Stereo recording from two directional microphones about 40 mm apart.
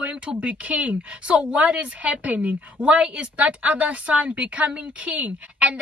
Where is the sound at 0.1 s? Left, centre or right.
Right.